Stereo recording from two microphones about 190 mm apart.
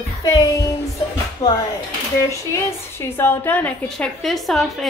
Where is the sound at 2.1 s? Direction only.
15° left (ahead or behind).